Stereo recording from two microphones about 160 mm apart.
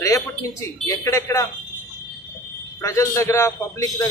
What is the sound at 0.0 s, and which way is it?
Speech, 20° left (ahead or behind).